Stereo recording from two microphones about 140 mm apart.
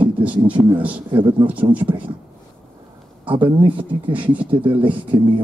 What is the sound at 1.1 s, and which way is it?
Speech, 35° right (ahead or behind).